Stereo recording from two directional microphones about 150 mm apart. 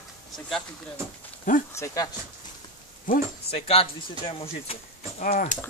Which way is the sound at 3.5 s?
40° left (ahead or behind).